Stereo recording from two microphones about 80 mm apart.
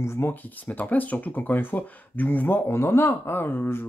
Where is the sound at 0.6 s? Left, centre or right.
Left.